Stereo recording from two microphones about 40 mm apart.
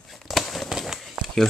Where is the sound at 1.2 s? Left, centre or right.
Right.